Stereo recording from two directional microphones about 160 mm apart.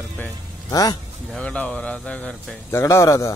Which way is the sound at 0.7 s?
25° left (ahead or behind).